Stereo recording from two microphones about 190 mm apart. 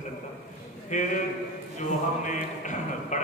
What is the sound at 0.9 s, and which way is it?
Speech, 40° left (ahead or behind).